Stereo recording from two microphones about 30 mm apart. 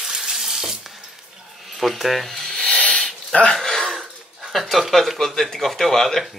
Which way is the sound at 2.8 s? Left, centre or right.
Left.